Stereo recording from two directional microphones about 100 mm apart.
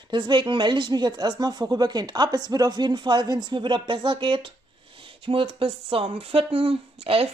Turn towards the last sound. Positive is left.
turn(degrees=-75)  # may be behind; listen again after turning